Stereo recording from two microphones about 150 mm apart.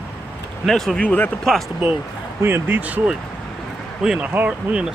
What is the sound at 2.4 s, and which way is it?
Speech, 15° right (ahead or behind).